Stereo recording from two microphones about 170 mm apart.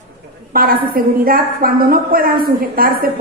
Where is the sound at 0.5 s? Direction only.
60° right (ahead or behind).